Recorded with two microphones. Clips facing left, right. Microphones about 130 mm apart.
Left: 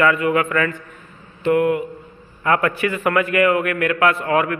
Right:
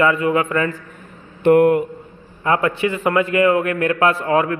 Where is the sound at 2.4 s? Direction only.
25° right (ahead or behind).